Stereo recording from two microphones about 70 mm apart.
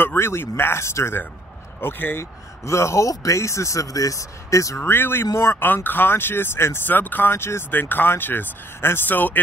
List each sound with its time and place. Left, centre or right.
0.0 s speech: left
2.6 s speech: left
5.9 s speech: left